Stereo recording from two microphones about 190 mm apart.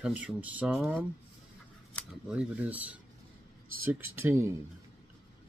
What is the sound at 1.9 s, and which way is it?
Scissors, 10° left (ahead or behind).